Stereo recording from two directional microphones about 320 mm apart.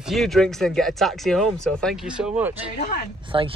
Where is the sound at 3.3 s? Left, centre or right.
Centre.